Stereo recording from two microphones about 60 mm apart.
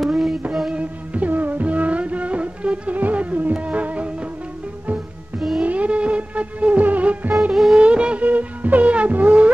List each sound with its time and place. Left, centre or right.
0.0 s music: centre
0.7 s music: right
5.6 s music: right